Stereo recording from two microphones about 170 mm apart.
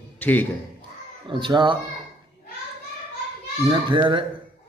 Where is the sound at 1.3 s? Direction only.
30° right (ahead or behind).